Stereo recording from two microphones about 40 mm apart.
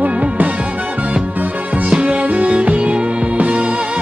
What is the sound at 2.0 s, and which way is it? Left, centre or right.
Music, right.